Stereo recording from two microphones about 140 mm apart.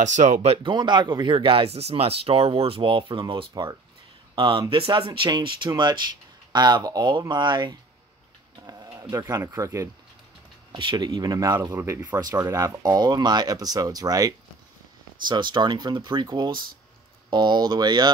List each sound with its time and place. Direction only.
0.0 s speech: 60° right (ahead or behind)
0.7 s speech: 35° right (ahead or behind)
8.6 s a sound: 25° right (ahead or behind)
9.1 s speech: 20° right (ahead or behind)
10.7 s speech: 35° right (ahead or behind)